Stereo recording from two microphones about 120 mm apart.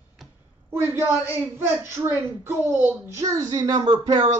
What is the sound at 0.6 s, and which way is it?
A woman's voice, 20° right (ahead or behind).